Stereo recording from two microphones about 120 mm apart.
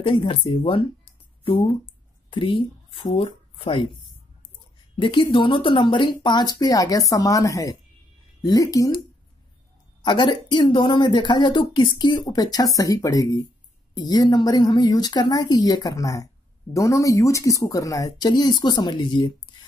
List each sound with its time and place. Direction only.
0.0 s speech: 40° left (ahead or behind)
4.9 s speech: 45° left (ahead or behind)
10.0 s speech: 40° left (ahead or behind)